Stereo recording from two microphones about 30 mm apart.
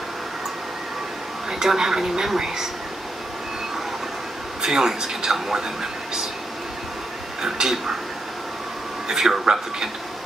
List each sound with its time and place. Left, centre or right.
1.5 s speech: centre
4.6 s speech: centre
7.4 s speech: centre
9.0 s speech: centre